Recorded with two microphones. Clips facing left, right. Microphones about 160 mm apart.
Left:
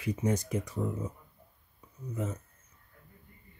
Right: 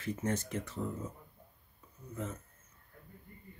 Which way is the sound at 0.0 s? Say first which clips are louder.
Left 4 dB; 15° left (ahead or behind).